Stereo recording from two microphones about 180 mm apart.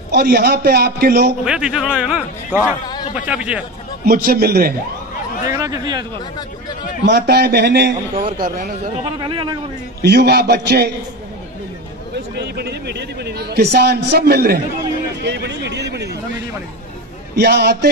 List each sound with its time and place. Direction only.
0.1 s a man's voice: 65° right (ahead or behind)
1.4 s a man's voice: 5° right (ahead or behind)
4.0 s a man's voice: 55° right (ahead or behind)
5.5 s speech: 20° right (ahead or behind)
7.1 s a man's voice: 65° right (ahead or behind)
8.4 s speech: 50° right (ahead or behind)
9.0 s speech: 25° right (ahead or behind)
10.0 s a man's voice: 65° right (ahead or behind)
12.4 s a man's voice: 65° right (ahead or behind)
17.4 s a man's voice: 65° right (ahead or behind)